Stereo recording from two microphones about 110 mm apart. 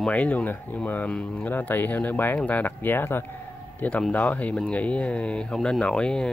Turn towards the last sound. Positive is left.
turn(degrees=10)  # may be behind; listen again after turning